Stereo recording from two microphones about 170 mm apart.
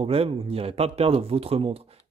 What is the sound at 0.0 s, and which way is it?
Speech, 35° right (ahead or behind).